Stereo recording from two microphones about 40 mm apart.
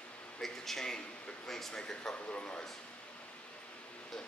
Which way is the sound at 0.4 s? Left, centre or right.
Centre.